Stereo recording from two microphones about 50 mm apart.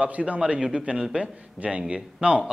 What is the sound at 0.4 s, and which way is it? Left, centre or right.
A man's voice, centre.